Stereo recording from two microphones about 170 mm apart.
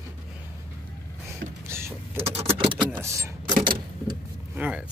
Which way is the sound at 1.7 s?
15° right (ahead or behind).